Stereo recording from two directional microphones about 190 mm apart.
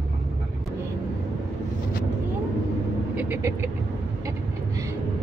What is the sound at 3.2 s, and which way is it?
Vehicle, 10° right (ahead or behind).